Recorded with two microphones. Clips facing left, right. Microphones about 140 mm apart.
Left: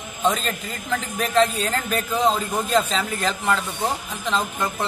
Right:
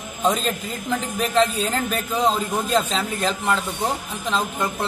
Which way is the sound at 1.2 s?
Centre (ahead or behind).